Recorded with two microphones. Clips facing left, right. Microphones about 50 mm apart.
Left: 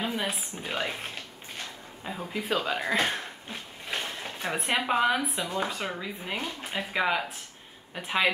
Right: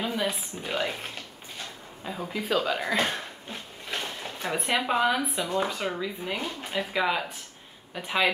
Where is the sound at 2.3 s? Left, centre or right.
Centre.